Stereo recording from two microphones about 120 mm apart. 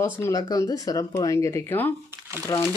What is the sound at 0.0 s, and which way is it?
Speech, 25° left (ahead or behind).